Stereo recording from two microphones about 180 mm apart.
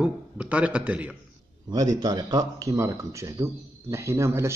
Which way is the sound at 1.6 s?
20° right (ahead or behind).